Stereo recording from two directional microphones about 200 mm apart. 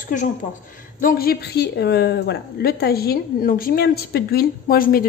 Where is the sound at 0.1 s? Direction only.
40° left (ahead or behind).